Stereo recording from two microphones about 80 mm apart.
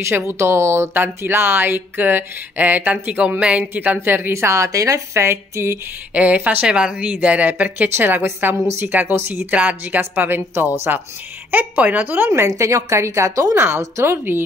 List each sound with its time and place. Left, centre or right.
0.0 s speech: right
6.1 s speech: centre
9.5 s speech: centre
12.3 s a woman's voice: right